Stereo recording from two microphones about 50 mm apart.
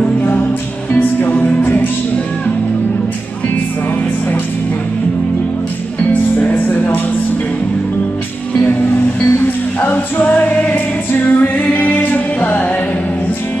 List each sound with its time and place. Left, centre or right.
0.0 s music: left
6.5 s music: left
9.8 s music: left
10.2 s music: left